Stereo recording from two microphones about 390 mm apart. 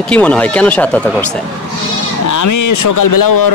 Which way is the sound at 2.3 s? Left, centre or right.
Left.